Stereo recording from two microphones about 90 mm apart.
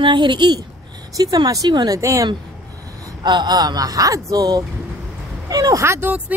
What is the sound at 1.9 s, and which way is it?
Speech, 35° right (ahead or behind).